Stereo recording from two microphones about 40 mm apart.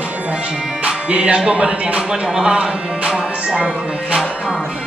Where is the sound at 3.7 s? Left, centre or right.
Right.